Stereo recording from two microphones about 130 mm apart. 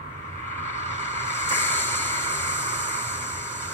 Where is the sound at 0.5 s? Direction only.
15° left (ahead or behind).